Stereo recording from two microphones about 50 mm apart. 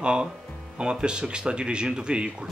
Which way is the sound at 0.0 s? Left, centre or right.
Centre.